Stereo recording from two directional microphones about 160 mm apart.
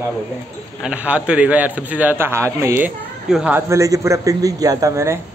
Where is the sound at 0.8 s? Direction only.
5° right (ahead or behind).